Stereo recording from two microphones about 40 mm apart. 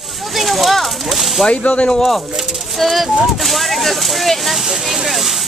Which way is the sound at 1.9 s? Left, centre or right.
Centre.